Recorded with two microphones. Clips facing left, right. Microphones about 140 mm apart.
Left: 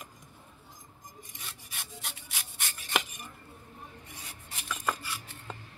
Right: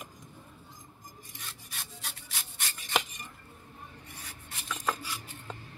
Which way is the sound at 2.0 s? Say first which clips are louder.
Even; 10° left (ahead or behind).